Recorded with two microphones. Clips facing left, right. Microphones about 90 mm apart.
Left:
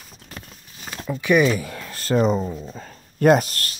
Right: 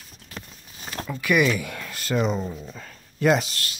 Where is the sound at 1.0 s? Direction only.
25° left (ahead or behind).